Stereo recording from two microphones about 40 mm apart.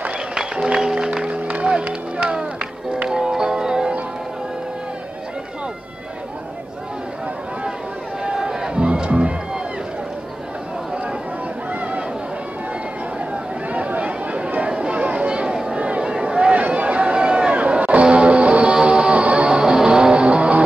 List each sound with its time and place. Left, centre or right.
0.3 s music: centre
8.2 s music: centre
11.7 s chatter: right
13.2 s chatter: right
16.6 s a sound: right
18.0 s music: right